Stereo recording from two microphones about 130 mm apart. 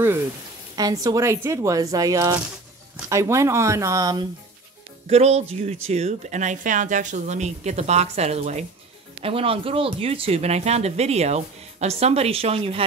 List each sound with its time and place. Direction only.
0.7 s speech: 30° right (ahead or behind)
5.0 s speech: 55° right (ahead or behind)